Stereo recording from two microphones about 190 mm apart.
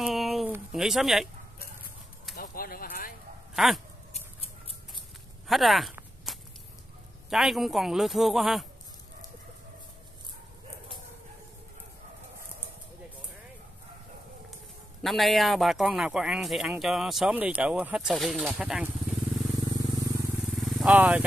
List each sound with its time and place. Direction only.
0.0 s a sound: centre (ahead or behind)
0.5 s speech: 5° right (ahead or behind)
2.3 s a sound: 50° left (ahead or behind)
3.5 s a man's voice: centre (ahead or behind)
5.5 s a man's voice: centre (ahead or behind)
6.3 s a sound: centre (ahead or behind)
7.2 s a man's voice: centre (ahead or behind)
15.0 s a man's voice: centre (ahead or behind)
20.4 s vehicle: centre (ahead or behind)